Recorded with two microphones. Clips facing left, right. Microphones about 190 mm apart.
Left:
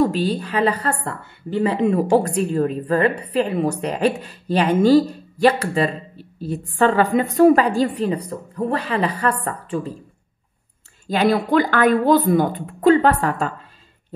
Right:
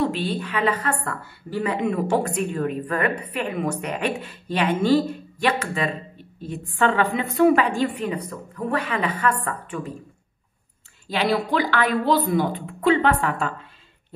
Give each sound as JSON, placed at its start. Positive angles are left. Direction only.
{"t": 0.0, "sound": "a woman's voice", "side_deg": 40}
{"t": 11.1, "sound": "speech", "side_deg": 45}